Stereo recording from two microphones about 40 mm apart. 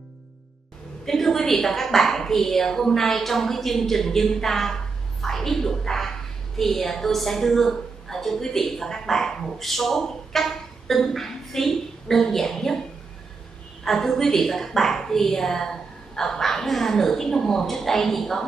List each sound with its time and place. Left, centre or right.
1.0 s a woman's voice: centre
5.2 s a sound: centre
6.6 s a woman's voice: centre
13.8 s a woman's voice: centre